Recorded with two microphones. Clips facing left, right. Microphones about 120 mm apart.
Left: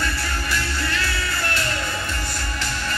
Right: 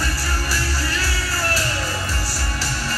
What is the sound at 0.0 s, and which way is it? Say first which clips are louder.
Music: right 1 dB; 35° right (ahead or behind).